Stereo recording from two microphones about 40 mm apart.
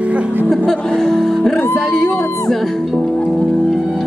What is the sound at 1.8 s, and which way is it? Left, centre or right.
Speech, centre.